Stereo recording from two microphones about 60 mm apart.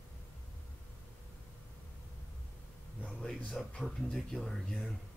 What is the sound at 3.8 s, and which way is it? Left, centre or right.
Speech, centre.